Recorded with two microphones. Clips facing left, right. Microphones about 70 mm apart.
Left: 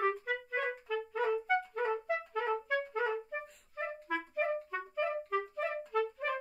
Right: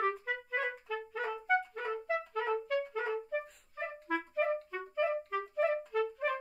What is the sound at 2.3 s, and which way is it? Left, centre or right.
Music, centre.